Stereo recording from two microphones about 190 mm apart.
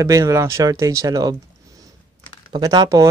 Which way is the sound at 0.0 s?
15° right (ahead or behind).